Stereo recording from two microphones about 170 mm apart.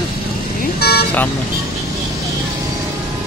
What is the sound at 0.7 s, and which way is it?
Speech, 70° left (ahead or behind).